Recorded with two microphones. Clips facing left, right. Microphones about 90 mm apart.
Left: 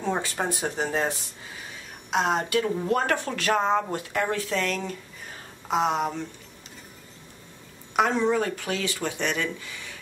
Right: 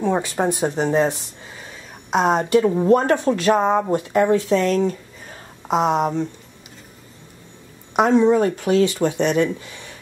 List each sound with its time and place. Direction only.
0.0 s speech: 15° right (ahead or behind)
2.5 s speech: 35° right (ahead or behind)
4.5 s speech: 35° right (ahead or behind)
7.9 s speech: 20° right (ahead or behind)
8.4 s speech: 30° right (ahead or behind)